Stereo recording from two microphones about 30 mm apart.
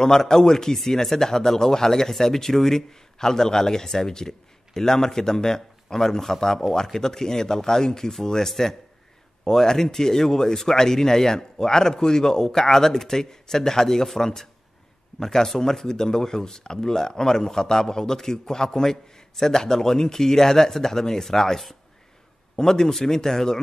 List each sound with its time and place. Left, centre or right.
0.0 s speech: centre